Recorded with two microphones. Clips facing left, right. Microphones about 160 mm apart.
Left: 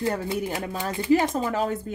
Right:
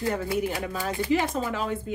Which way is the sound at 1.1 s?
40° left (ahead or behind).